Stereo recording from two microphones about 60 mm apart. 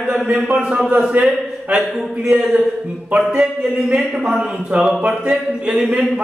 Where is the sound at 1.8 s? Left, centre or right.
Centre.